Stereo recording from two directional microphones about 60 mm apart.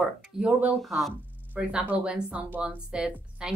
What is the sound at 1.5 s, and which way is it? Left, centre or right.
A woman's voice, right.